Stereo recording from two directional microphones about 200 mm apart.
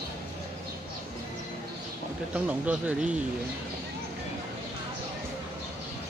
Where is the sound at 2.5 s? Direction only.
5° right (ahead or behind).